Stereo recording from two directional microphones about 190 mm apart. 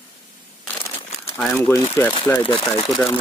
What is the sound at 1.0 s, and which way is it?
Crumpling, 30° left (ahead or behind).